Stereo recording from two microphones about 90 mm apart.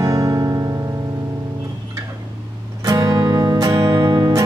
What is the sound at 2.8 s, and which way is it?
Music, 40° right (ahead or behind).